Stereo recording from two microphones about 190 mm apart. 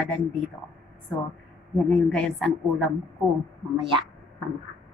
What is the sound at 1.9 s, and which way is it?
Speech, 5° left (ahead or behind).